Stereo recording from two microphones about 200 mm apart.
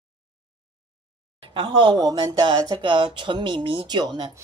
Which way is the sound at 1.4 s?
25° right (ahead or behind).